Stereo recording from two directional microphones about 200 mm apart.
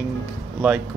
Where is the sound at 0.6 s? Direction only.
5° right (ahead or behind).